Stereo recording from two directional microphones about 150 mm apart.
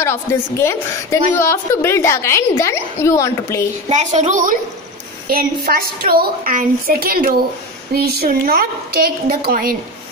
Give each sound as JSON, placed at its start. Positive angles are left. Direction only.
{"t": 0.0, "sound": "a woman's voice", "side_deg": 15}
{"t": 3.9, "sound": "a woman's voice", "side_deg": -50}
{"t": 5.3, "sound": "a woman's voice", "side_deg": -80}
{"t": 7.9, "sound": "a woman's voice", "side_deg": -90}